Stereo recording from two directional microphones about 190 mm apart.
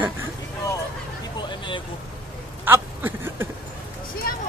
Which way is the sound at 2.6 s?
10° right (ahead or behind).